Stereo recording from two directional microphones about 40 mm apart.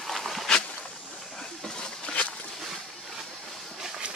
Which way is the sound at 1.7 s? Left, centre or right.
Centre.